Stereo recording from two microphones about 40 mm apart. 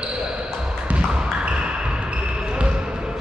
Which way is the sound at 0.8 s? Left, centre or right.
Right.